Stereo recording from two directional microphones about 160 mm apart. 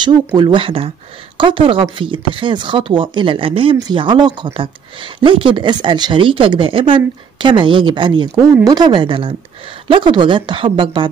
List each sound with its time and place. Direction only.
0.4 s speech: 30° right (ahead or behind)